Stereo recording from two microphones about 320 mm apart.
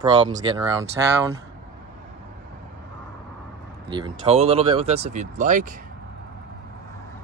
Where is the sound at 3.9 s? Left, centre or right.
Centre.